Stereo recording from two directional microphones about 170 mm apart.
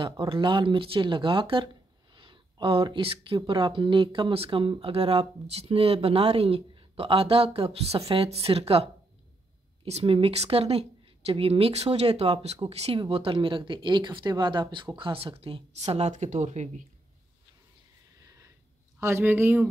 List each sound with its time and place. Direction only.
0.0 s speech: 30° right (ahead or behind)
2.1 s a sound: 30° right (ahead or behind)
3.3 s speech: 25° right (ahead or behind)
9.8 s speech: 35° right (ahead or behind)
18.9 s speech: 15° right (ahead or behind)